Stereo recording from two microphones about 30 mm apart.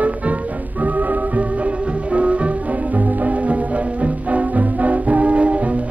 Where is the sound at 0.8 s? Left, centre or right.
Right.